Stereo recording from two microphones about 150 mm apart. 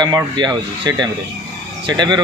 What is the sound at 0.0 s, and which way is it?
A man's voice, 25° right (ahead or behind).